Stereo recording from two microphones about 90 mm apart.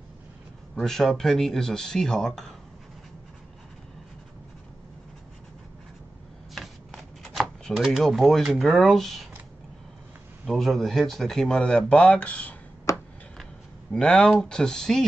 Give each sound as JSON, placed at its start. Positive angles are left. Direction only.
{"t": 0.7, "sound": "speech", "side_deg": 5}
{"t": 6.5, "sound": "shuffling cards", "side_deg": 0}
{"t": 10.4, "sound": "speech", "side_deg": 0}
{"t": 12.9, "sound": "a sound", "side_deg": 35}
{"t": 13.9, "sound": "speech", "side_deg": 10}